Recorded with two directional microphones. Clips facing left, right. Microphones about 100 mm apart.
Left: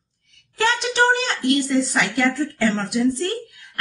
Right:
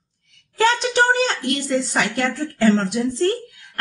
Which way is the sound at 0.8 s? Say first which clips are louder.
Right 1 dB; 35° right (ahead or behind).